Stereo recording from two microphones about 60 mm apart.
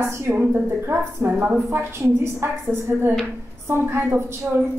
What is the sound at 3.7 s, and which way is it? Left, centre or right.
Speech, right.